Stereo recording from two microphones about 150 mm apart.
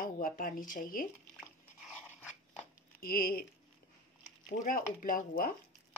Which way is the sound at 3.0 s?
80° left.